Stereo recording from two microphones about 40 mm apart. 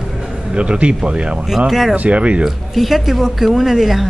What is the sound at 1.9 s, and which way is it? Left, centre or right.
Speech, right.